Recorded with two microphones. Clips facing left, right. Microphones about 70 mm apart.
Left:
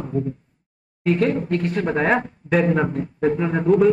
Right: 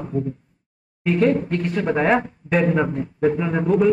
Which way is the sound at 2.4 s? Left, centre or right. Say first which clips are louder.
Left 2 dB; left.